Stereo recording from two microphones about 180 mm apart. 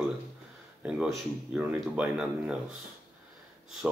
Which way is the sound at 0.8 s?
10° right (ahead or behind).